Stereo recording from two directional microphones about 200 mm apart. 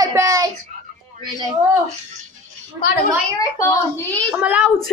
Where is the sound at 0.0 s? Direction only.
15° right (ahead or behind).